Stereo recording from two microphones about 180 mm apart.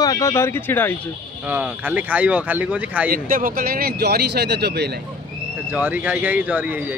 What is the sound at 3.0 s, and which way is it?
Speech, 50° right (ahead or behind).